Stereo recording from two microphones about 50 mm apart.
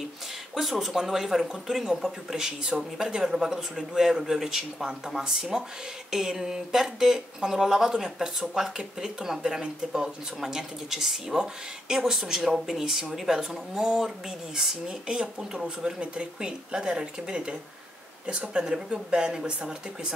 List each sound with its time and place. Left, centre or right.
0.6 s speech: centre